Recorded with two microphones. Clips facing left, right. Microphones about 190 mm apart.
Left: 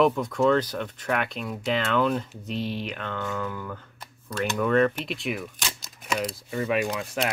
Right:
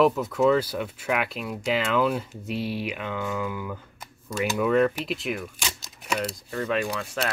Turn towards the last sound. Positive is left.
turn(degrees=10)  # may be behind; listen again after turning